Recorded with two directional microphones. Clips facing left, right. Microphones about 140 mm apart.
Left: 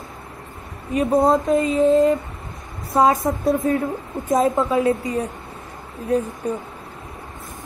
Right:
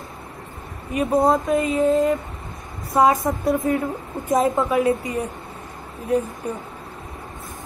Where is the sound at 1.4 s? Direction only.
25° left (ahead or behind).